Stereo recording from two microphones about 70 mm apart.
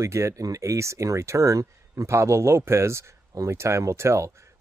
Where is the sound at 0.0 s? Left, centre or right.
Right.